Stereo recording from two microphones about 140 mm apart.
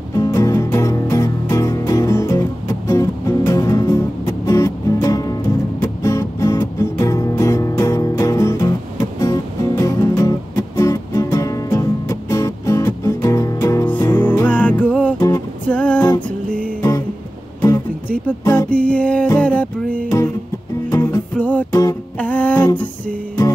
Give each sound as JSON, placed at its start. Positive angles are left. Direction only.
{"t": 0.2, "sound": "music", "side_deg": 25}
{"t": 15.1, "sound": "music", "side_deg": 25}
{"t": 15.7, "sound": "music", "side_deg": 10}
{"t": 18.7, "sound": "music", "side_deg": 10}
{"t": 20.9, "sound": "music", "side_deg": 20}
{"t": 21.4, "sound": "music", "side_deg": 10}